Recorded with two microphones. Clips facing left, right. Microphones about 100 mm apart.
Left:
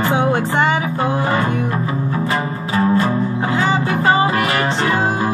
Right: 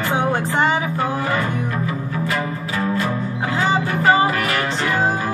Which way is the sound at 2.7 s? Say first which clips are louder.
Left 6 dB; 35° left (ahead or behind).